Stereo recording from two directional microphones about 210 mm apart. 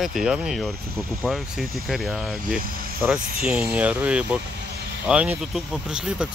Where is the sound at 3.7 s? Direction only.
5° right (ahead or behind).